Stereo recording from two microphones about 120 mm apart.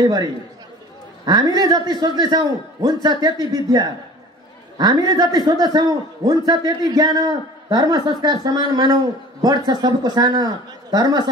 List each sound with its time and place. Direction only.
0.0 s a man's voice: 35° right (ahead or behind)